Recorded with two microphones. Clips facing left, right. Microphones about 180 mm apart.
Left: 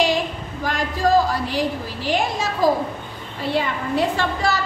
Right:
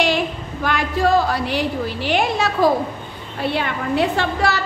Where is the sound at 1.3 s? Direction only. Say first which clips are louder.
Right 1 dB; 65° right (ahead or behind).